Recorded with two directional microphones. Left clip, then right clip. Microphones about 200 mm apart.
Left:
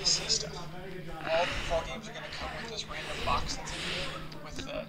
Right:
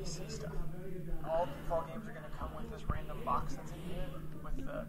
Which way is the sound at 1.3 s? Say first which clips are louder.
Left 6 dB; 20° left (ahead or behind).